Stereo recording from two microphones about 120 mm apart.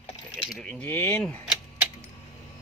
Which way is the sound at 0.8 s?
15° left (ahead or behind).